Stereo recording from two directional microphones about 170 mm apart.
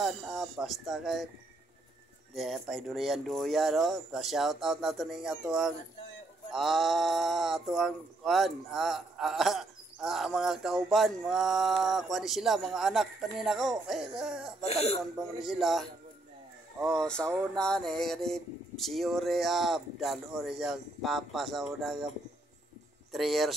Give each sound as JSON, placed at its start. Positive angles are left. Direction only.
{"t": 0.0, "sound": "speech", "side_deg": 0}
{"t": 2.3, "sound": "speech", "side_deg": 0}
{"t": 14.6, "sound": "speech", "side_deg": 40}
{"t": 15.1, "sound": "speech", "side_deg": 0}
{"t": 23.1, "sound": "speech", "side_deg": 0}